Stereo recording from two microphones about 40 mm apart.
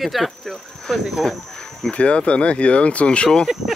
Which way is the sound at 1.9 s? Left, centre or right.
Left.